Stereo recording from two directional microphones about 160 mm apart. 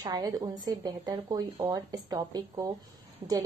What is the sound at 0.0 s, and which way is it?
A woman's voice, 25° right (ahead or behind).